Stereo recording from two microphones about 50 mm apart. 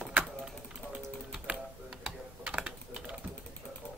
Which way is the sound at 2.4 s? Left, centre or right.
Centre.